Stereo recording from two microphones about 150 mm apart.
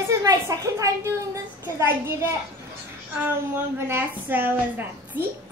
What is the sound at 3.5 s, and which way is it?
A woman's voice, 15° right (ahead or behind).